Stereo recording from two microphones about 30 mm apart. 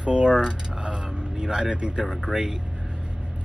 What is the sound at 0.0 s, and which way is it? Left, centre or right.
Speech, right.